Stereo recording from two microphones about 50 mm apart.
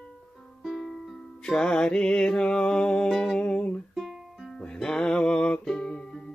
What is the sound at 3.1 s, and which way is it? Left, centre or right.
Music, centre.